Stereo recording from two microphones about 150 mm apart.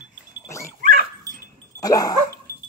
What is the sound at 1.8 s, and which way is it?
Dog, 25° left (ahead or behind).